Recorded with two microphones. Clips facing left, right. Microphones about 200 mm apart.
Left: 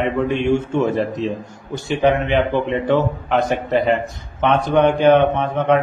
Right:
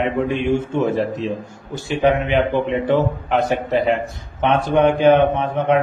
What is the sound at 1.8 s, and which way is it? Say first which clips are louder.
A man's voice: even; centre (ahead or behind).